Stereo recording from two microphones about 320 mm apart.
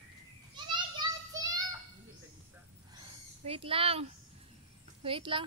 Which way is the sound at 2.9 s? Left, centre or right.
Centre.